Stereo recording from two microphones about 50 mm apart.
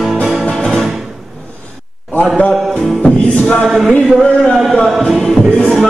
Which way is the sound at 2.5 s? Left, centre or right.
Centre.